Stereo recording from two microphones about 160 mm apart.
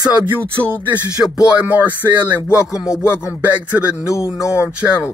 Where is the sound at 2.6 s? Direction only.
20° left (ahead or behind).